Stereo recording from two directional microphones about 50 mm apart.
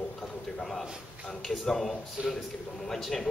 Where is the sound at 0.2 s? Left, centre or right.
Centre.